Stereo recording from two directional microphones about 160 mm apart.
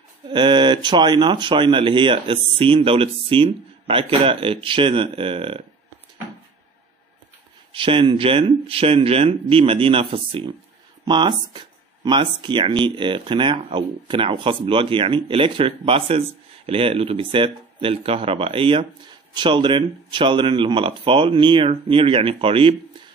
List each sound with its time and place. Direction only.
0.3 s speech: 30° right (ahead or behind)
7.7 s speech: 35° right (ahead or behind)